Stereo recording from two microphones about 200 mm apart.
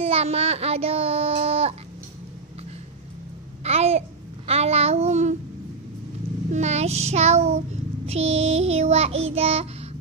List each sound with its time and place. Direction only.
0.0 s child singing: 30° right (ahead or behind)
3.6 s child singing: 30° right (ahead or behind)
6.5 s child singing: 35° right (ahead or behind)